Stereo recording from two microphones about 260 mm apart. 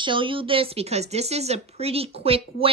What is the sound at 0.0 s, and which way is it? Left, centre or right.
Speech, centre.